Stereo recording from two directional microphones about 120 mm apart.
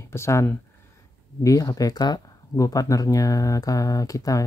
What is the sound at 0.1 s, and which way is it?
Speech, 25° left (ahead or behind).